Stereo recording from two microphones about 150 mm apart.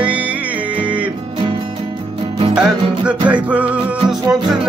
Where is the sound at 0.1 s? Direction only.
10° right (ahead or behind).